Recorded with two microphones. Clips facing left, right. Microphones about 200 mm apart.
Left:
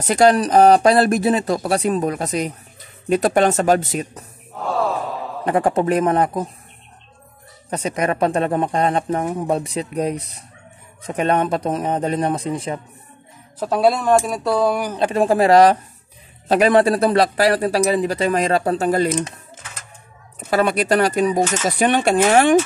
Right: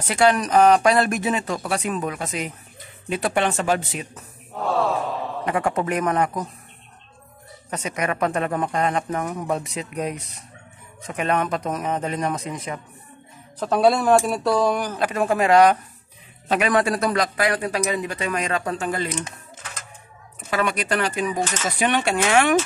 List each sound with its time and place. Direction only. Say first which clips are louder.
0.0 s a man's voice: left 5 dB; 40° left (ahead or behind)
4.6 s a sound: left 1 dB; centre (ahead or behind)
5.4 s a man's voice: left 6 dB; 35° left (ahead or behind)
7.7 s a man's voice: left 5 dB; 35° left (ahead or behind)
13.6 s speech: left 1 dB; centre (ahead or behind)
15.0 s a man's voice: left 5 dB; 30° left (ahead or behind)
20.4 s a man's voice: left 6 dB; 35° left (ahead or behind)